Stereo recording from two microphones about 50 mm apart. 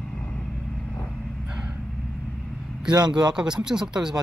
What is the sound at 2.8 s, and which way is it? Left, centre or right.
Speech, centre.